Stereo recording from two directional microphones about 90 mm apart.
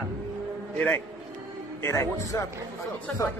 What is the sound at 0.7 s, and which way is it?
Speech, 15° left (ahead or behind).